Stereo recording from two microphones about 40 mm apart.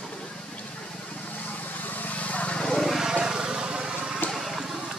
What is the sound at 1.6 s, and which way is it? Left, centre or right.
Vehicle, left.